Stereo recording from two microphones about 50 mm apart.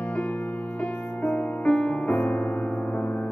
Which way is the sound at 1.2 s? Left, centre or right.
Left.